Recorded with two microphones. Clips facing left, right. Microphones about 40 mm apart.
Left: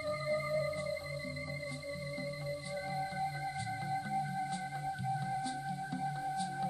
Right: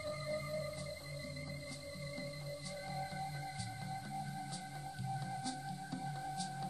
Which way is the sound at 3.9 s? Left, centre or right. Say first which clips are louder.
Left 9 dB; left.